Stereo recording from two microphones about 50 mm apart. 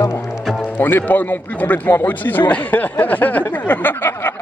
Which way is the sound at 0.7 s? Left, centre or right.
Left.